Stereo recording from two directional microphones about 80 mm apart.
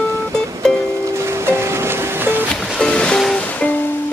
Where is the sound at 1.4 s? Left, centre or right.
Right.